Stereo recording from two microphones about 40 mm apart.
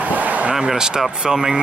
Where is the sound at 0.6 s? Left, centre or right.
Centre.